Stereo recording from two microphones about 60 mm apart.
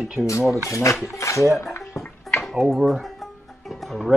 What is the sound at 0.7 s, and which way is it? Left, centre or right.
Speech, left.